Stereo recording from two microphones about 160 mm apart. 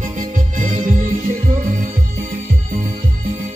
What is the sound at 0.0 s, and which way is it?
Music, 55° right (ahead or behind).